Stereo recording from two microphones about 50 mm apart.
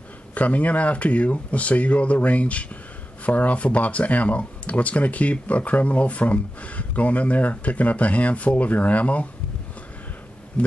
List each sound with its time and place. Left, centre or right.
0.3 s speech: left